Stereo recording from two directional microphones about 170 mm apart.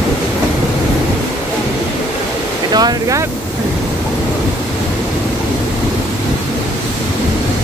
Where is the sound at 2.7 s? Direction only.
20° right (ahead or behind).